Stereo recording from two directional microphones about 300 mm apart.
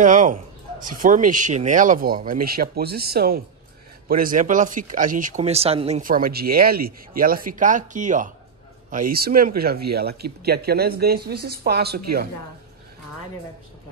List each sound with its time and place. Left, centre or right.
0.0 s speech: right